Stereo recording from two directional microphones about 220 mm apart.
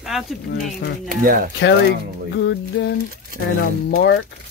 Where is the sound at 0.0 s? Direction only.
Centre (ahead or behind).